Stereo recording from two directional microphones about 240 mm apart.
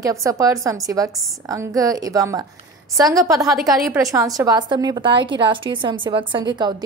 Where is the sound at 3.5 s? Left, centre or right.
Centre.